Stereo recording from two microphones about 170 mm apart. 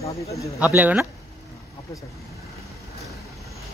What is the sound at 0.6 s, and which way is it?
Speech, 10° right (ahead or behind).